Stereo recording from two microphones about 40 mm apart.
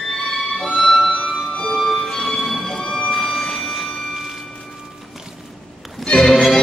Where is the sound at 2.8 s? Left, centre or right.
Left.